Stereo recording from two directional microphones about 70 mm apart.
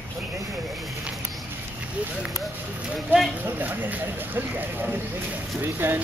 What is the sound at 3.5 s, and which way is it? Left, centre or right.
Speech, right.